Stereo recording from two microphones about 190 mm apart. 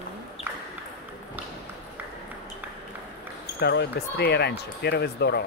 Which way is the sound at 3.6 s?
60° left (ahead or behind).